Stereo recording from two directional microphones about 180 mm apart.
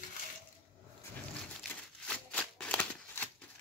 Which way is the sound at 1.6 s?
5° left (ahead or behind).